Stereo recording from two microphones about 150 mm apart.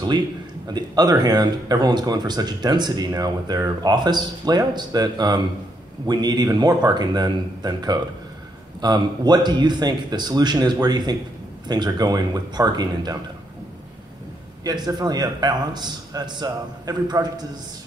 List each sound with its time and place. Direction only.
0.7 s speech: 25° right (ahead or behind)
14.6 s speech: 25° right (ahead or behind)